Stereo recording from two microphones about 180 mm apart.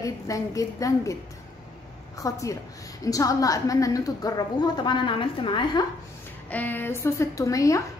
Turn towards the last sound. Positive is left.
turn(degrees=20)  # may be behind; listen again after turning